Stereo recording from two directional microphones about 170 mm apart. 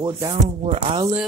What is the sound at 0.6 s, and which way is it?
Speech, 35° right (ahead or behind).